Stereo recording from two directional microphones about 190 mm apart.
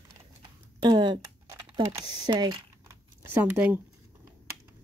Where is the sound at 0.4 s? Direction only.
25° right (ahead or behind).